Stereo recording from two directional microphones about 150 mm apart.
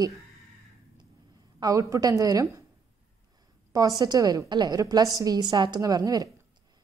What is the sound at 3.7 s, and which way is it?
Speech, 25° right (ahead or behind).